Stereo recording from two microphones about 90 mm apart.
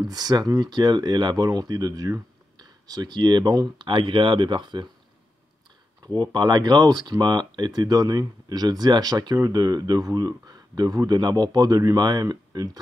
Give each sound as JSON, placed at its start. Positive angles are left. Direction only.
{"t": 0.0, "sound": "speech", "side_deg": -45}
{"t": 6.0, "sound": "speech", "side_deg": -50}